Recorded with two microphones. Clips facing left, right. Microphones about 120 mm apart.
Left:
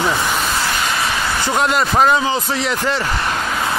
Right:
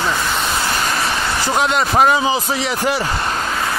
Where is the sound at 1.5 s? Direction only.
Centre (ahead or behind).